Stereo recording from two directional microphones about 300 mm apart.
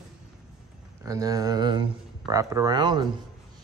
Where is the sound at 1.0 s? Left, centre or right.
Centre.